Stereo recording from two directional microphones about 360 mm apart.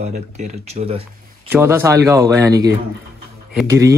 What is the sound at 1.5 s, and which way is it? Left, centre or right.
Speech, centre.